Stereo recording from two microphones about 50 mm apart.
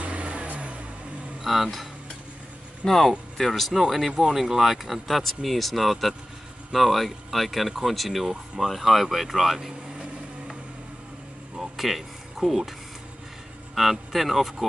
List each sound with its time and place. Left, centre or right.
0.0 s vehicle: right
1.4 s speech: centre
11.7 s a sound: centre
13.7 s speech: centre